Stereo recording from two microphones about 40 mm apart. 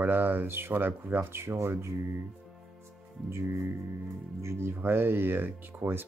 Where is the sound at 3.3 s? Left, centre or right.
Right.